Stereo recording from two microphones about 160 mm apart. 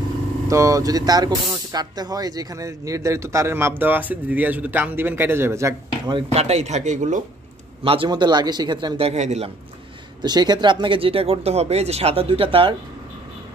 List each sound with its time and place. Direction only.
0.5 s speech: 20° right (ahead or behind)
6.1 s speech: 40° right (ahead or behind)
7.8 s speech: 35° right (ahead or behind)
10.2 s speech: 25° right (ahead or behind)